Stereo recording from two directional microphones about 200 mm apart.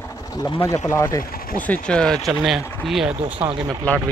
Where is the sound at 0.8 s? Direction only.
15° left (ahead or behind); by 3.4 s 5° right (ahead or behind).